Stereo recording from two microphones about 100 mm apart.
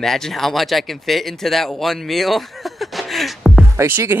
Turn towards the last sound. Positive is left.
turn(degrees=-20)  # may be behind; listen again after turning